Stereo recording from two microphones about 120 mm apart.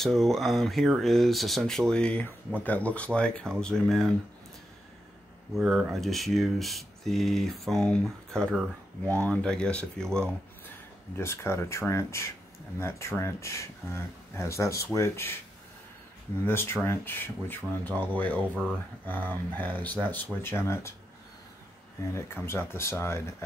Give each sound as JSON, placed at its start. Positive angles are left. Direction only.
{"t": 0.0, "sound": "speech", "side_deg": 0}
{"t": 5.6, "sound": "speech", "side_deg": -10}
{"t": 9.0, "sound": "speech", "side_deg": -25}
{"t": 9.3, "sound": "speech", "side_deg": 10}
{"t": 11.1, "sound": "speech", "side_deg": 20}
{"t": 16.4, "sound": "speech", "side_deg": 20}
{"t": 22.0, "sound": "speech", "side_deg": 20}